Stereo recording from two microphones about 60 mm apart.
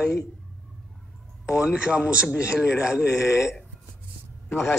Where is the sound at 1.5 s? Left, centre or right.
Centre.